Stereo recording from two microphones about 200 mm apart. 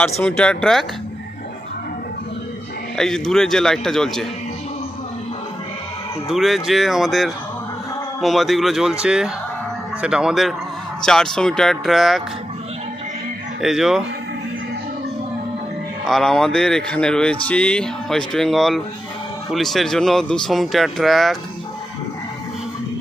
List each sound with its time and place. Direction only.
0.2 s speech: 5° left (ahead or behind)
3.0 s speech: centre (ahead or behind)
6.2 s speech: centre (ahead or behind)
13.6 s speech: centre (ahead or behind)
16.1 s speech: centre (ahead or behind)